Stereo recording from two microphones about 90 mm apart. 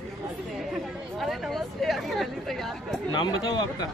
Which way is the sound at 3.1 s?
55° left (ahead or behind).